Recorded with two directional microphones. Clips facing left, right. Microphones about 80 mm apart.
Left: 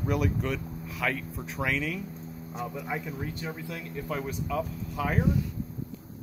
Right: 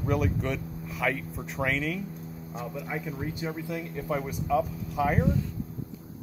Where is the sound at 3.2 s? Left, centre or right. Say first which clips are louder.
Right 2 dB; centre.